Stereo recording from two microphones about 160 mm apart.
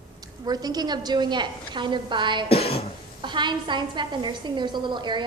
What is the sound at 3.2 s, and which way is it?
A woman's voice, 30° right (ahead or behind).